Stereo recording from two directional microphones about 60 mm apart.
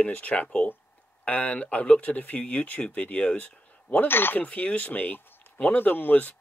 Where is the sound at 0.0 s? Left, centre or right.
Left.